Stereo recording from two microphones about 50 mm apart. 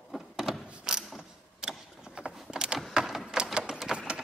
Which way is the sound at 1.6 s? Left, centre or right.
Centre.